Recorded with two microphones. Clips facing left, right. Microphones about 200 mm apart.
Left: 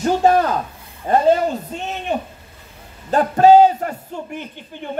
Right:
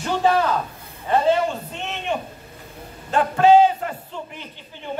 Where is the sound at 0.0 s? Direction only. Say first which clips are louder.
Left 4 dB; 45° left (ahead or behind).